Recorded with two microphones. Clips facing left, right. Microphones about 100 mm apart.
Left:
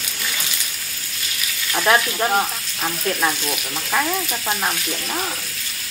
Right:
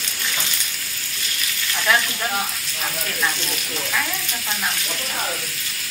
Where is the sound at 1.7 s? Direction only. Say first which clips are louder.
Left 4 dB; 40° left (ahead or behind).